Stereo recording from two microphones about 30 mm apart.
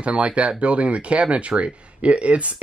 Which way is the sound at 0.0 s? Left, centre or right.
Right.